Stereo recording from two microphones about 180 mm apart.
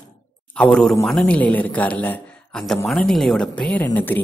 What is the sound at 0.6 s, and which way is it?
A woman's voice, 5° left (ahead or behind).